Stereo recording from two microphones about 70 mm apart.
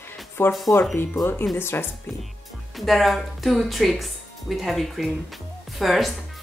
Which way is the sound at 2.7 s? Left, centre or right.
Centre.